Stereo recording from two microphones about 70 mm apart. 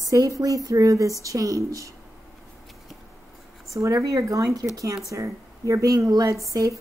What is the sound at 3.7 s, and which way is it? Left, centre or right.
A woman's voice, right.